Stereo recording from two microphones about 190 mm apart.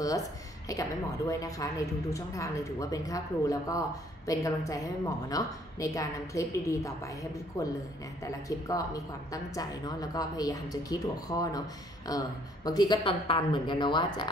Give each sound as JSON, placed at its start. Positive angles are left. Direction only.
{"t": 0.7, "sound": "a woman's voice", "side_deg": 20}